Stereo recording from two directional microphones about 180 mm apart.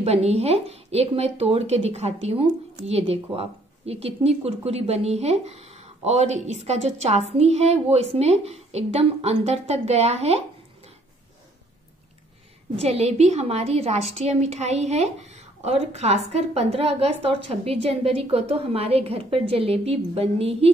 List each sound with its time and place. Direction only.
0.0 s speech: 35° right (ahead or behind)
12.7 s speech: 35° right (ahead or behind)